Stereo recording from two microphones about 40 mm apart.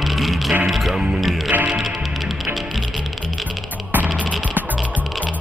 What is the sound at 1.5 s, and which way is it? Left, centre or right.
Music, right.